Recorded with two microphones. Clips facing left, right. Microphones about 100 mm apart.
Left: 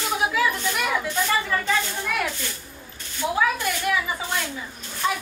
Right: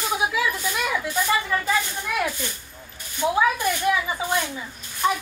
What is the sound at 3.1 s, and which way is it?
A woman's voice, 20° right (ahead or behind).